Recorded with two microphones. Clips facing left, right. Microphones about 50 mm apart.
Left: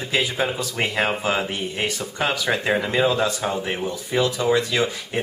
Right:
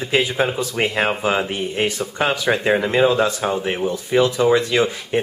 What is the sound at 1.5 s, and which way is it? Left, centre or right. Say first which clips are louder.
Speech: right 4 dB; right.